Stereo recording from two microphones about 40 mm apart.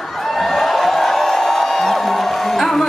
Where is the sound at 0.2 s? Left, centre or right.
Centre.